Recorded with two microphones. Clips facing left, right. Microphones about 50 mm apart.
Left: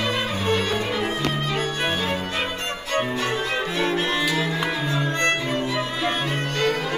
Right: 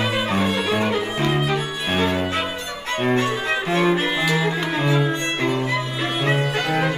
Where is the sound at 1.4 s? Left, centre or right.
Centre.